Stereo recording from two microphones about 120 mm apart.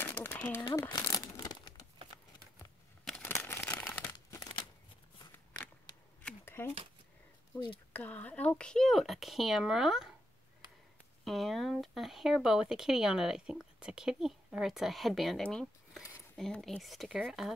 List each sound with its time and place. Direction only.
0.0 s a sound: 20° left (ahead or behind)
0.6 s speech: 35° left (ahead or behind)
1.1 s crumpling: 30° left (ahead or behind)
3.3 s a sound: 20° left (ahead or behind)
4.1 s crumpling: 30° left (ahead or behind)
6.2 s shuffling cards: 20° left (ahead or behind)
7.5 s speech: 40° left (ahead or behind)
7.9 s speech: 15° left (ahead or behind); by 10.1 s 5° right (ahead or behind)
11.2 s speech: centre (ahead or behind)